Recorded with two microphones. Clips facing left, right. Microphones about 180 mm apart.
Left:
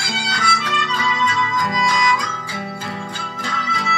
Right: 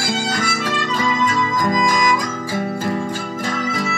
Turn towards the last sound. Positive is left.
turn(degrees=-50)  # may be behind; listen again after turning